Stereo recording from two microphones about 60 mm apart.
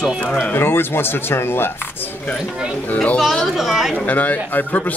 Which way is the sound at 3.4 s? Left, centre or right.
Centre.